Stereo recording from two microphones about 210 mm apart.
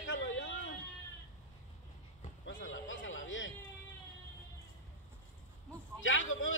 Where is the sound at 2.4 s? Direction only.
65° left (ahead or behind).